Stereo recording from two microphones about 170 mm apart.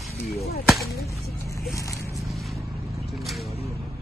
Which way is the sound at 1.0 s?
15° left (ahead or behind).